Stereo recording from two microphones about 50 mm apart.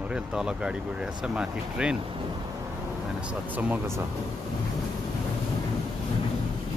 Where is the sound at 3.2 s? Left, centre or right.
Right.